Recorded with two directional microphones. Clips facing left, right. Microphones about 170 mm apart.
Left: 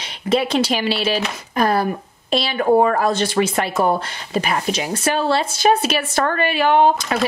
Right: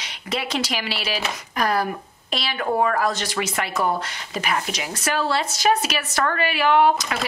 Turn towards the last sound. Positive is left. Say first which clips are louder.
# left 3 dB
turn(degrees=30)  # may be behind; listen again after turning